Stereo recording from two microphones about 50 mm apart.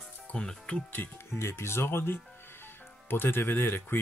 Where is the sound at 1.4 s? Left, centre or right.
Left.